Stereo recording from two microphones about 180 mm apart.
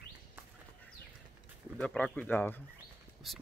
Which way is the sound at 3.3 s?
Centre (ahead or behind).